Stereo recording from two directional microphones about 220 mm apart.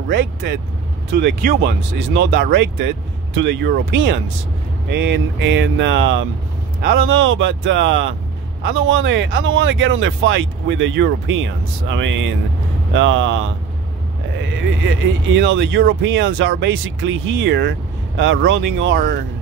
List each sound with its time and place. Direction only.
0.1 s speech: 50° right (ahead or behind)
14.9 s speech: 55° right (ahead or behind)